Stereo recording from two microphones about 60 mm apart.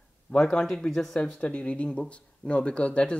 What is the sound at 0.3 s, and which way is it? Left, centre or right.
Speech, centre.